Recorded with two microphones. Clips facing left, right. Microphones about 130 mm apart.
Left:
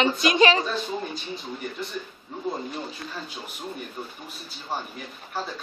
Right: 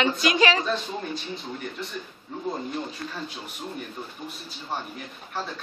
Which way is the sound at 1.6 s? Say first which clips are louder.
Left 2 dB; 5° left (ahead or behind).